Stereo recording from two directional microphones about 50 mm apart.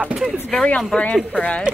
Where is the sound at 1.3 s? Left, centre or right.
Left.